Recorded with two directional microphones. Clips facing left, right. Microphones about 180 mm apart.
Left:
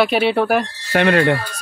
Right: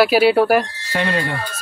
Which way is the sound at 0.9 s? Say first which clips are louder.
Left 7 dB; 65° left (ahead or behind).